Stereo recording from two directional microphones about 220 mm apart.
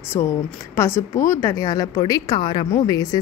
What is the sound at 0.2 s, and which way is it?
A woman's voice, 10° left (ahead or behind).